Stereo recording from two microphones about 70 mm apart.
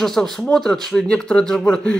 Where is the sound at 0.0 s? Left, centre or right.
Centre.